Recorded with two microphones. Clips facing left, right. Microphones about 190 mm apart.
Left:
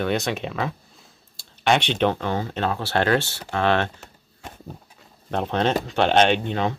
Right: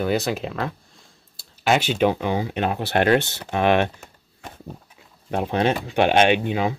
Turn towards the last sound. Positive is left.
turn(degrees=-5)  # may be behind; listen again after turning